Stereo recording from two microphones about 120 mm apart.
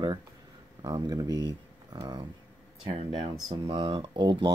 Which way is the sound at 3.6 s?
45° right (ahead or behind).